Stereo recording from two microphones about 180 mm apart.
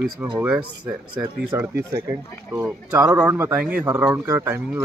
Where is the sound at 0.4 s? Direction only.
5° right (ahead or behind).